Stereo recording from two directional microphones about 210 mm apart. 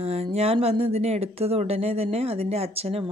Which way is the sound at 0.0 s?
30° right (ahead or behind).